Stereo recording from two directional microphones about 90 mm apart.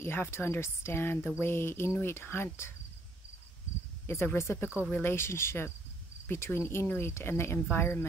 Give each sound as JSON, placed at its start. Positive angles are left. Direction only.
{"t": 0.0, "sound": "speech", "side_deg": 25}
{"t": 4.1, "sound": "speech", "side_deg": 30}